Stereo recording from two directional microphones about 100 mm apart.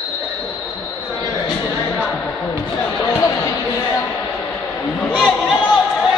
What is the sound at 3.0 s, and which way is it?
Chatter, 30° left (ahead or behind).